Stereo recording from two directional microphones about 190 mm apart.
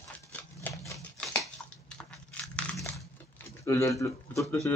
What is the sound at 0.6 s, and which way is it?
Typewriter, 15° left (ahead or behind).